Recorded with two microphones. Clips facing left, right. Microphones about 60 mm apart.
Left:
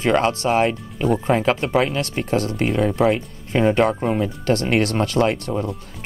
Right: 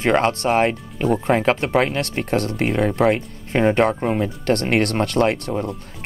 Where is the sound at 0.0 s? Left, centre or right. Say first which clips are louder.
Even; right.